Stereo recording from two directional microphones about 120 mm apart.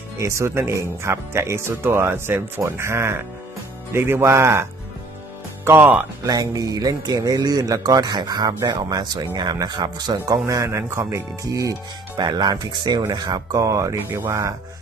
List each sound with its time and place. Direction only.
0.2 s speech: 25° right (ahead or behind)
5.7 s speech: 15° right (ahead or behind)
6.2 s speech: 30° right (ahead or behind)
12.2 s speech: 35° right (ahead or behind)